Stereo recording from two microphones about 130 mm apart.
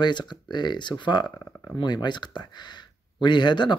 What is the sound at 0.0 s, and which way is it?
Speech, 35° left (ahead or behind).